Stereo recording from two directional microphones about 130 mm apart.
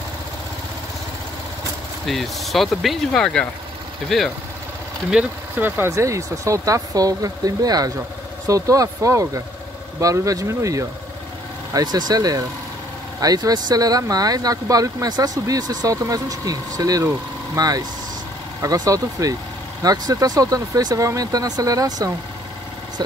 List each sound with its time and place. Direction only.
2.0 s speech: centre (ahead or behind)
5.1 s speech: 15° right (ahead or behind)